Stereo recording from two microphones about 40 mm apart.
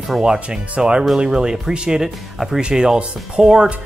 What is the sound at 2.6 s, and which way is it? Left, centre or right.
Speech, right.